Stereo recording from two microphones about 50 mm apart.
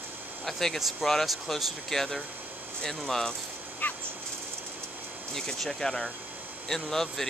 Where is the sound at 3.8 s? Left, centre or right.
Left.